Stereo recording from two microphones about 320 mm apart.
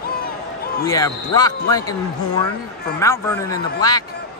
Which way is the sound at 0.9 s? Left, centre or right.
Centre.